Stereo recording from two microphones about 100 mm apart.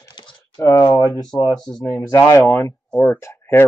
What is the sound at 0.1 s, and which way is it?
Speech, 40° left (ahead or behind).